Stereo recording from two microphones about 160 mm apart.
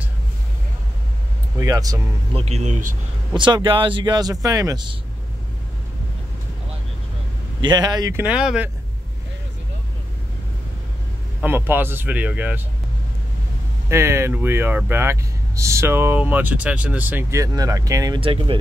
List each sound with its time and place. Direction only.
1.6 s speech: 20° right (ahead or behind)
2.3 s speech: 40° right (ahead or behind)
3.3 s speech: 30° right (ahead or behind)
7.6 s speech: 25° right (ahead or behind)
8.2 s speech: 5° right (ahead or behind)
11.4 s speech: 10° right (ahead or behind)
13.8 s speech: 15° right (ahead or behind)
18.2 s speech: 35° right (ahead or behind)